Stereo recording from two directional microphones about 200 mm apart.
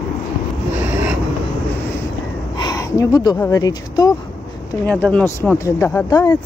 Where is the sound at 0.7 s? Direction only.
10° right (ahead or behind).